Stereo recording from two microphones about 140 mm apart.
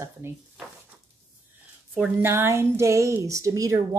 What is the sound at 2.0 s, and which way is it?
Speech, 15° right (ahead or behind).